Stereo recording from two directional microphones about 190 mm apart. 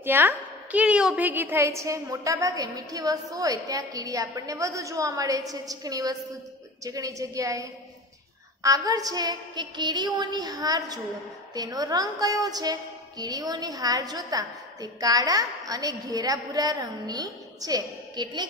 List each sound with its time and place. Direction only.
0.0 s a woman's voice: 10° right (ahead or behind)
8.6 s a woman's voice: 20° right (ahead or behind)